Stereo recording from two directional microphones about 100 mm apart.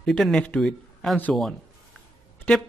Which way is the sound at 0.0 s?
5° left (ahead or behind).